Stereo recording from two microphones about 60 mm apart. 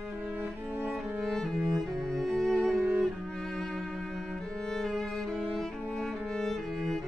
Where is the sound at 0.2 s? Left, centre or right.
Right.